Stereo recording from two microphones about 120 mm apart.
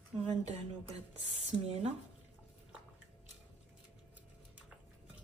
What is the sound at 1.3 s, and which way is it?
Speech, 60° right (ahead or behind).